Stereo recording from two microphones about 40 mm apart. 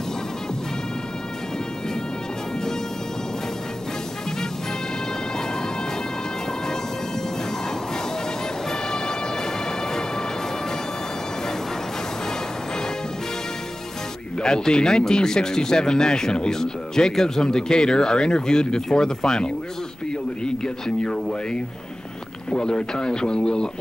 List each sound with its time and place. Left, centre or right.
14.4 s a man's voice: centre